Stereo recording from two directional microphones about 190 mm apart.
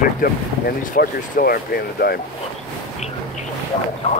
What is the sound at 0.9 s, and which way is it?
Speech, 50° left (ahead or behind).